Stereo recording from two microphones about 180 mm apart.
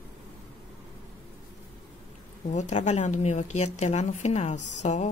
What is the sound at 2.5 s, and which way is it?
A woman's voice, 40° left (ahead or behind).